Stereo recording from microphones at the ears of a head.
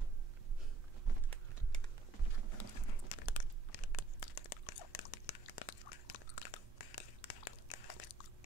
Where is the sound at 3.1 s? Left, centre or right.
Left.